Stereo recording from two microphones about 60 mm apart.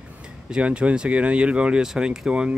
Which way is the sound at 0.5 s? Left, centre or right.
Centre.